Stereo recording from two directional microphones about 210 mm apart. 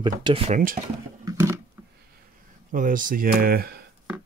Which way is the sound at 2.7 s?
40° right (ahead or behind).